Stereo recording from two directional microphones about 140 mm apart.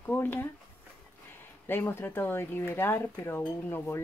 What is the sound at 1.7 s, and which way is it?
Speech, 15° left (ahead or behind).